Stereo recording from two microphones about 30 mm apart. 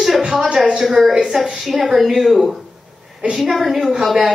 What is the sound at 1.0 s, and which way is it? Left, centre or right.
Speech, centre.